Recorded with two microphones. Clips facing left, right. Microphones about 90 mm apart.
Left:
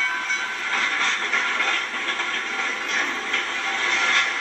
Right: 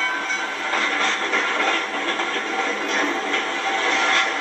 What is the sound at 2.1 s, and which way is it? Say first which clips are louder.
Music: right 4 dB; 30° right (ahead or behind).